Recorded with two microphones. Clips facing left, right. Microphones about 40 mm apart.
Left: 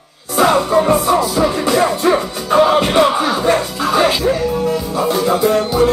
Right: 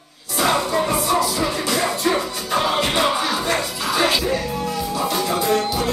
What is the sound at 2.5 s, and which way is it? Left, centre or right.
Music, left.